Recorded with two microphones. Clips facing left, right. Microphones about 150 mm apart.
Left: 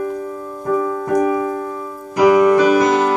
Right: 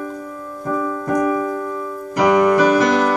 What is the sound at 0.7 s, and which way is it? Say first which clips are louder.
Keyboard: left 3 dB; 10° left (ahead or behind).